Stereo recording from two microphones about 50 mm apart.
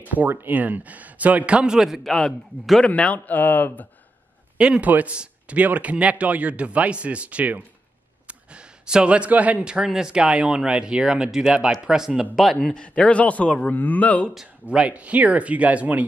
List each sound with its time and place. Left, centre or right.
0.3 s a man's voice: right; by 2.0 s centre
2.8 s a man's voice: left
4.6 s speech: right
9.8 s speech: centre
12.7 s a man's voice: centre
14.7 s speech: right